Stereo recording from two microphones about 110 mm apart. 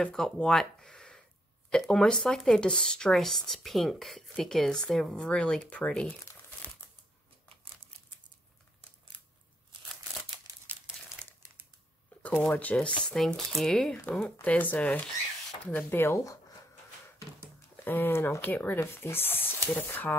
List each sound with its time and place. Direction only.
0.0 s speech: 5° left (ahead or behind)
12.1 s a sound: 15° left (ahead or behind)
12.4 s speech: 10° left (ahead or behind)
17.8 s speech: 20° left (ahead or behind)